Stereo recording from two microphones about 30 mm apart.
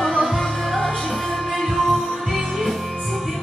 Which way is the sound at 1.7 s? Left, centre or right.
Centre.